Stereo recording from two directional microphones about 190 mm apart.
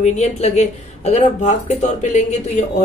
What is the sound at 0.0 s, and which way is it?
A woman's voice, 35° left (ahead or behind).